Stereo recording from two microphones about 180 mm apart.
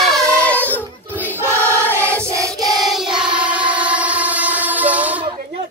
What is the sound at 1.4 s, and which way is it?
Choir, 15° right (ahead or behind).